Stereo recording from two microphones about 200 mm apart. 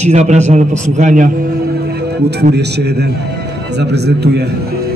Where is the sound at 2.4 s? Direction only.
55° right (ahead or behind).